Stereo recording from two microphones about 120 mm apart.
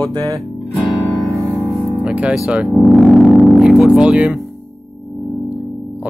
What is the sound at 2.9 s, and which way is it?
Music, centre (ahead or behind).